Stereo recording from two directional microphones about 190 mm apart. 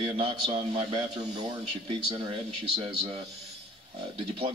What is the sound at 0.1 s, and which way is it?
A man's voice, 30° right (ahead or behind).